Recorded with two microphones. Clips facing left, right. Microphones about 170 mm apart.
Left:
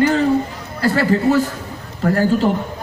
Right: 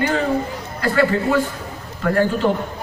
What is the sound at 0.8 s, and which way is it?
A man's voice, 40° left (ahead or behind).